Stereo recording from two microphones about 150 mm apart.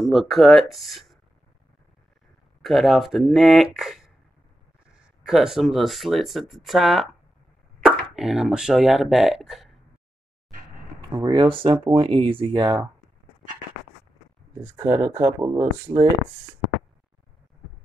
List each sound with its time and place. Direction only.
0.0 s speech: centre (ahead or behind)
2.6 s speech: centre (ahead or behind)
5.2 s speech: 5° right (ahead or behind)
11.1 s speech: 35° right (ahead or behind)
14.8 s speech: 15° right (ahead or behind)
15.3 s speech: 30° right (ahead or behind)